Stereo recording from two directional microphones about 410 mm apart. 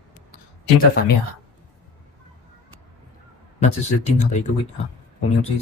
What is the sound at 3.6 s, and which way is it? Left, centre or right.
Speech, centre.